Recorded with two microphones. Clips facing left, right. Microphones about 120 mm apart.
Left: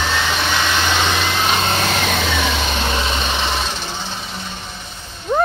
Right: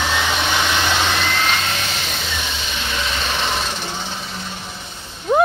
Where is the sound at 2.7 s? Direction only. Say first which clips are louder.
Left 5 dB; 40° left (ahead or behind).